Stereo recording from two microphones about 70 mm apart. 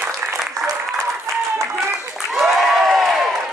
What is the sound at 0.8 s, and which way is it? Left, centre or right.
Applause, centre.